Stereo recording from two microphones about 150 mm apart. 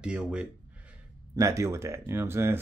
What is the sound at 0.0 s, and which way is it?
Speech, 5° right (ahead or behind).